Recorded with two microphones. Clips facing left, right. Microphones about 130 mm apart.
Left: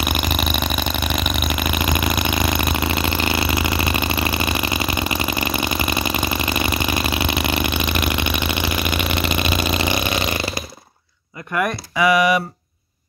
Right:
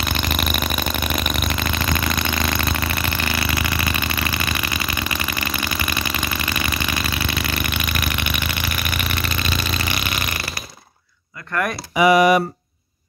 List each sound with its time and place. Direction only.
0.0 s vehicle: 10° left (ahead or behind)
11.5 s speech: 15° left (ahead or behind)